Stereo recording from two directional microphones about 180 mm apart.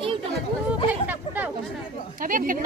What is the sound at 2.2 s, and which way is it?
Speech, 50° right (ahead or behind).